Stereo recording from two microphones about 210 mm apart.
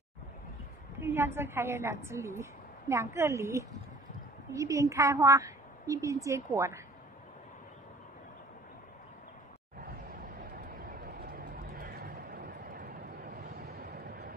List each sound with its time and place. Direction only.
0.9 s a woman's voice: 10° right (ahead or behind)
10.8 s vehicle: 50° right (ahead or behind)